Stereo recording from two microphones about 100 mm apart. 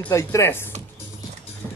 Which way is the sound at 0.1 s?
30° left (ahead or behind).